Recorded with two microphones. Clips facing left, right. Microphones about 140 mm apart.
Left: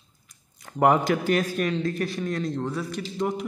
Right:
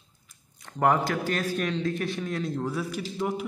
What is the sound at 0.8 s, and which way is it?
Speech, 15° left (ahead or behind).